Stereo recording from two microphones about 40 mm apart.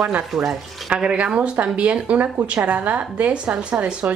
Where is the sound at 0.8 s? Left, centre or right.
Right.